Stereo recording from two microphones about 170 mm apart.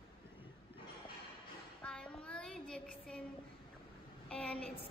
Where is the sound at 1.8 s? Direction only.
5° left (ahead or behind).